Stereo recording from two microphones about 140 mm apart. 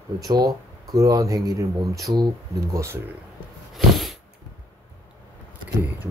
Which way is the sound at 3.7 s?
Centre (ahead or behind).